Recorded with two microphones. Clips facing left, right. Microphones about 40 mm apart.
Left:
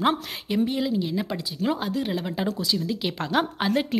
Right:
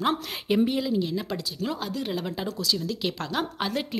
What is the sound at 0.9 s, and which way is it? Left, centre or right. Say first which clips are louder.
A woman's voice: left 1 dB; centre.